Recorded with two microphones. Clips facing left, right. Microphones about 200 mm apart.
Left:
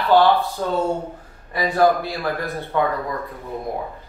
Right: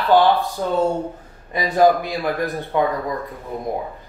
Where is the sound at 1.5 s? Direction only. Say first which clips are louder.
Right 2 dB; 20° right (ahead or behind).